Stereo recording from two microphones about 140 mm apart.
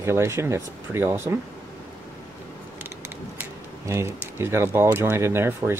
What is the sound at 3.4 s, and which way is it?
Speech, 20° right (ahead or behind).